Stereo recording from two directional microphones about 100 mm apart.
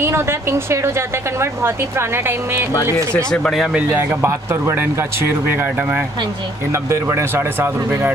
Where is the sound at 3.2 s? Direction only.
5° left (ahead or behind).